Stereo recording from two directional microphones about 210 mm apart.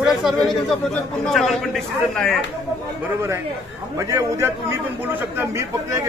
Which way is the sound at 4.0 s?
15° right (ahead or behind).